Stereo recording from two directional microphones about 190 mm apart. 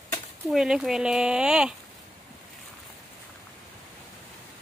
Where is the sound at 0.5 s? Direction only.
Centre (ahead or behind).